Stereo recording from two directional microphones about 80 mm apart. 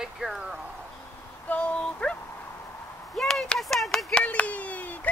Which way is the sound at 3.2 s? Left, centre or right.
Centre.